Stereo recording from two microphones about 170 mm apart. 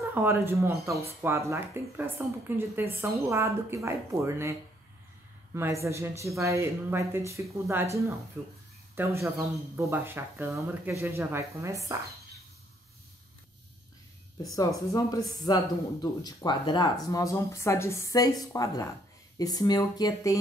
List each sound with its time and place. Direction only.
0.1 s speech: 15° right (ahead or behind)
14.5 s speech: 20° left (ahead or behind)